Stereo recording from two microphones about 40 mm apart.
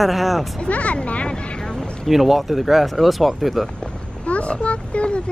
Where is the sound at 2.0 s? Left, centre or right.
Centre.